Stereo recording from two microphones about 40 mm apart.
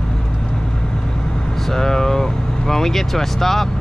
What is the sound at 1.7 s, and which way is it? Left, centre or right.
Speech, centre.